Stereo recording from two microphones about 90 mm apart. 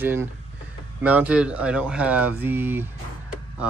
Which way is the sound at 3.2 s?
10° right (ahead or behind).